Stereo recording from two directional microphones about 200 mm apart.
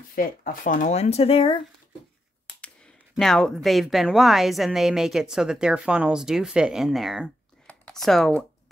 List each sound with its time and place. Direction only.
0.1 s speech: 45° left (ahead or behind); by 1.6 s 30° left (ahead or behind)
3.2 s a woman's voice: centre (ahead or behind)